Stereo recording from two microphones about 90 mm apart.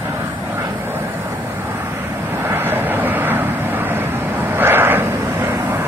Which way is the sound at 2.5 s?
25° right (ahead or behind).